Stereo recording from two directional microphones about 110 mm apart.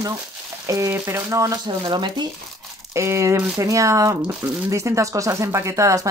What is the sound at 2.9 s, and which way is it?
Speech, 25° right (ahead or behind).